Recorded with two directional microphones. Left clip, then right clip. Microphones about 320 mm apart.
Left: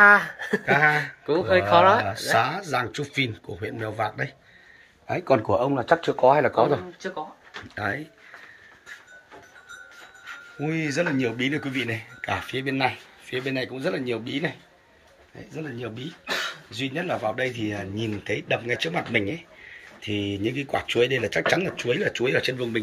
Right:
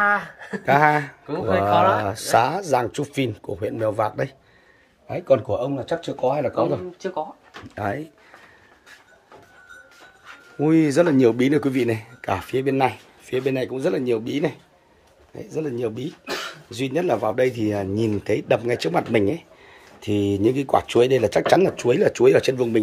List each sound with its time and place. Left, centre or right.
0.0 s a sound: left
0.7 s speech: centre
1.2 s speech: left
2.3 s speech: centre
5.3 s speech: centre
6.3 s speech: centre
10.6 s speech: centre